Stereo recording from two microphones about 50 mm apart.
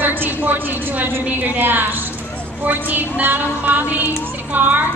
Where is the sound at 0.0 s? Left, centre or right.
Right.